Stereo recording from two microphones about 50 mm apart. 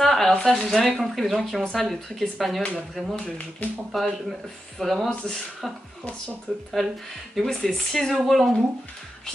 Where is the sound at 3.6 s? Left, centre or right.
Left.